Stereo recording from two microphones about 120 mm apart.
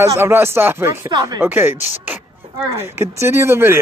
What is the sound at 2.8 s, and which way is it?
Speech, 20° right (ahead or behind).